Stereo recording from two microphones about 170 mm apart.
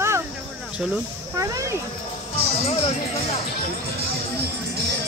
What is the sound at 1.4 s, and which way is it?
Speech, 20° right (ahead or behind).